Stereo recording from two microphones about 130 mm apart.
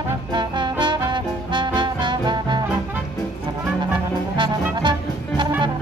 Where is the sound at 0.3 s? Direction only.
35° right (ahead or behind).